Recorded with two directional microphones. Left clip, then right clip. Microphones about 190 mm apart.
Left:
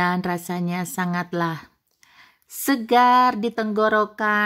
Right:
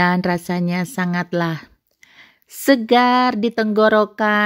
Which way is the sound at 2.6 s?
20° right (ahead or behind).